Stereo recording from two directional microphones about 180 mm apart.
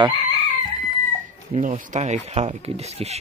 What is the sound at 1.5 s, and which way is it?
Speech, 40° right (ahead or behind).